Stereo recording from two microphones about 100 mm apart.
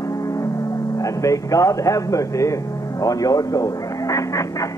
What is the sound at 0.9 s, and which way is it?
A man's voice, 35° left (ahead or behind).